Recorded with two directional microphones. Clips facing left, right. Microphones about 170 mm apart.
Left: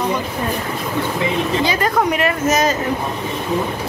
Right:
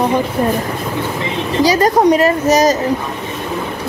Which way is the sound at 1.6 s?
40° right (ahead or behind).